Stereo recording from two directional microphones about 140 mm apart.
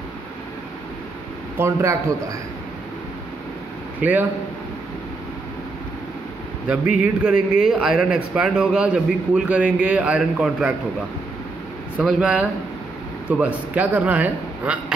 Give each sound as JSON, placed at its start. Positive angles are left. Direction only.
{"t": 1.6, "sound": "speech", "side_deg": -20}
{"t": 4.0, "sound": "a man's voice", "side_deg": -10}
{"t": 6.7, "sound": "a man's voice", "side_deg": -10}
{"t": 12.0, "sound": "a man's voice", "side_deg": -5}